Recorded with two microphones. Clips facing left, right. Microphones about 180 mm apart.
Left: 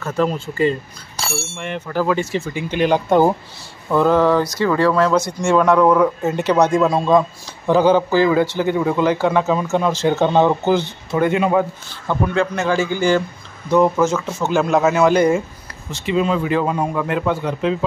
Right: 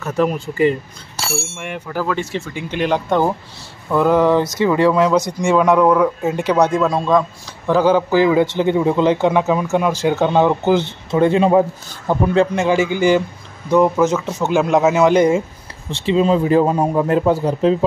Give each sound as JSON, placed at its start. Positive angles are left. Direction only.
{"t": 0.0, "sound": "speech", "side_deg": -15}
{"t": 2.0, "sound": "a man's voice", "side_deg": 5}
{"t": 3.9, "sound": "speech", "side_deg": -10}
{"t": 6.8, "sound": "a man's voice", "side_deg": 5}
{"t": 8.2, "sound": "speech", "side_deg": -15}
{"t": 10.6, "sound": "a man's voice", "side_deg": -20}
{"t": 12.6, "sound": "speech", "side_deg": -20}
{"t": 15.9, "sound": "a man's voice", "side_deg": -30}